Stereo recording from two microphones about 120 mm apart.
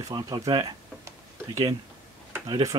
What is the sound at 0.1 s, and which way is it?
Speech, 40° right (ahead or behind).